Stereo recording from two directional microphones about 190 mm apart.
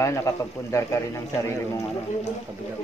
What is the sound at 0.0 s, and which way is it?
A man's voice, 15° left (ahead or behind).